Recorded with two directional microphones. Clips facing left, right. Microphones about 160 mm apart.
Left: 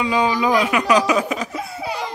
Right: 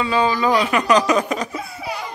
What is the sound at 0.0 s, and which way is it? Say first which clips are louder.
Speech: even; 15° left (ahead or behind).